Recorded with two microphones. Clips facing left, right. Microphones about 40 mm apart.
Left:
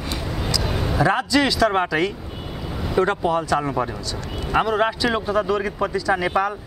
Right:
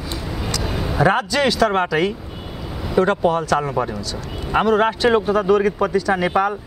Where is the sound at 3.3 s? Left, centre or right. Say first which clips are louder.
Right 2 dB; centre.